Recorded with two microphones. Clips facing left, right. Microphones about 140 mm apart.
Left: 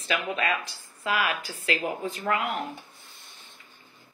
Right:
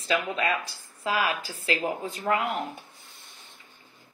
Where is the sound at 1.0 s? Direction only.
30° right (ahead or behind).